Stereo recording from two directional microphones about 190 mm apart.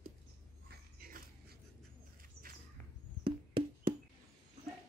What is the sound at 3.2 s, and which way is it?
Music, 25° right (ahead or behind).